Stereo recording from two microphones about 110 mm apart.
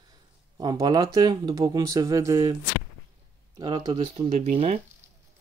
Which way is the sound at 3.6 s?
45° right (ahead or behind).